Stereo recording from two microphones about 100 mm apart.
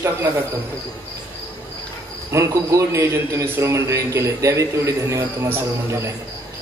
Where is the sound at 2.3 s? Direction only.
30° right (ahead or behind).